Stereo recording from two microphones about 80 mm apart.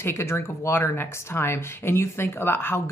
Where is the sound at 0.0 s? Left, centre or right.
Left.